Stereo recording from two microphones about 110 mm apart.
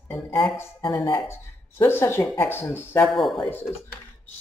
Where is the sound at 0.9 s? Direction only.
40° left (ahead or behind).